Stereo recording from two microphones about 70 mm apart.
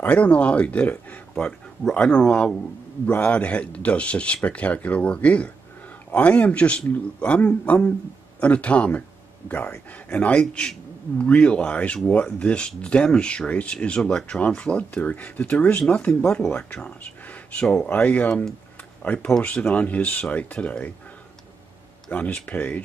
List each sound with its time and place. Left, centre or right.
0.1 s speech: centre
1.3 s a man's voice: centre
19.1 s speech: centre
22.1 s speech: centre